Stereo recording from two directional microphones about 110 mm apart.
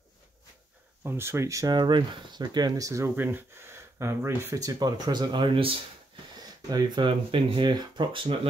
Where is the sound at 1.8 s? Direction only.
45° right (ahead or behind).